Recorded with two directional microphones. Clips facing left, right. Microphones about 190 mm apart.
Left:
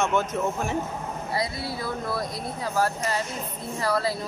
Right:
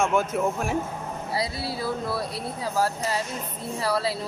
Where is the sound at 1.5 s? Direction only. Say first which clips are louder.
Right 1 dB; 35° right (ahead or behind).